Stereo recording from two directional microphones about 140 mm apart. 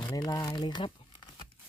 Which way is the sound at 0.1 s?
30° left (ahead or behind).